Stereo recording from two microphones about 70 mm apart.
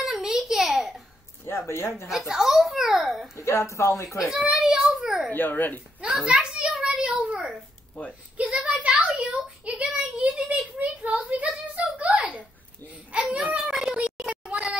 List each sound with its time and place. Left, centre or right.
0.0 s a sound: centre
1.4 s speech: left
2.0 s a child's voice: centre
3.3 s speech: left
4.3 s a child's voice: centre
5.3 s speech: left
6.2 s a child's voice: centre
6.7 s a sound: centre
13.3 s baby cry: centre
13.7 s a sound: centre